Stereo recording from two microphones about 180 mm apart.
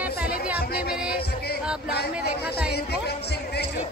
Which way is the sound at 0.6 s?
60° left (ahead or behind).